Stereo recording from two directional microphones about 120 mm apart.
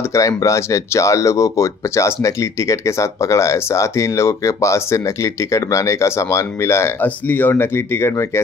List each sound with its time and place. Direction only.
0.1 s speech: 25° left (ahead or behind)